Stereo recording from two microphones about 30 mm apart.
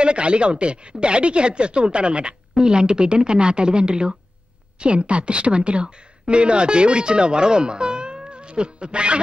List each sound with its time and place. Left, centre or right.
0.0 s a woman's voice: right